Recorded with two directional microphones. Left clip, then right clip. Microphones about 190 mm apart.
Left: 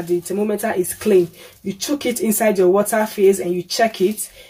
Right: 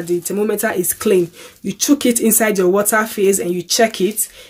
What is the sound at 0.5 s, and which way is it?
Speech, 55° right (ahead or behind).